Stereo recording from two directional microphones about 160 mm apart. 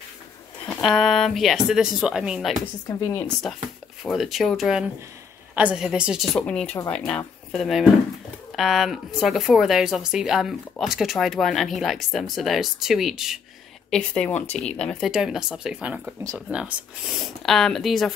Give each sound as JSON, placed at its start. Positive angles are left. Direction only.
{"t": 0.7, "sound": "speech", "side_deg": 0}
{"t": 2.9, "sound": "speech", "side_deg": 20}
{"t": 4.0, "sound": "speech", "side_deg": 0}
{"t": 6.4, "sound": "speech", "side_deg": 5}